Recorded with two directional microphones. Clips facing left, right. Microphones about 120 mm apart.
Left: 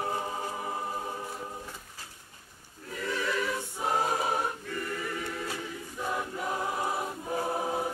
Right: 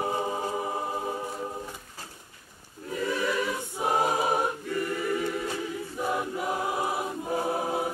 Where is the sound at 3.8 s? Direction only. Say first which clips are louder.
Right 4 dB; 15° right (ahead or behind).